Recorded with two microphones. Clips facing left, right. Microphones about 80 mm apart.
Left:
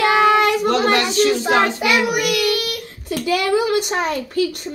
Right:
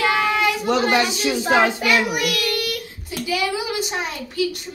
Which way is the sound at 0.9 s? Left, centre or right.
Centre.